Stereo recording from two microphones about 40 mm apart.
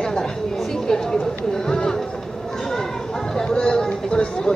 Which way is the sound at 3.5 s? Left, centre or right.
Left.